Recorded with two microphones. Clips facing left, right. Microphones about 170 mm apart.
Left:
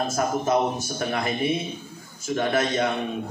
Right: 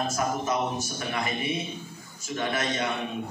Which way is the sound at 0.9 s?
50° left (ahead or behind).